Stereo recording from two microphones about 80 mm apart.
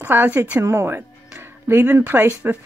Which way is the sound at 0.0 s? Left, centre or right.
Right.